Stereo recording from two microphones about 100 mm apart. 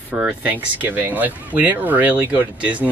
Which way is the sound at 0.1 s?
15° right (ahead or behind).